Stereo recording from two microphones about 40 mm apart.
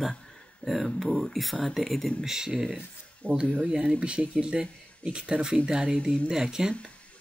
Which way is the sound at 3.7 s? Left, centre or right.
Right.